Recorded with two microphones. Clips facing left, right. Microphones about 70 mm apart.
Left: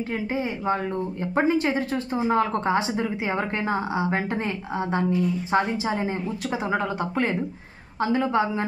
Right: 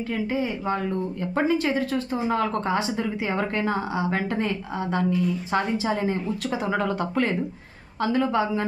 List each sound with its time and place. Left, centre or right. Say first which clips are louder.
0.1 s speech: right 3 dB; left